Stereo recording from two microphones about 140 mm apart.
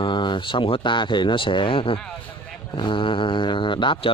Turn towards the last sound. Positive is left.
turn(degrees=35)  # may be behind; listen again after turning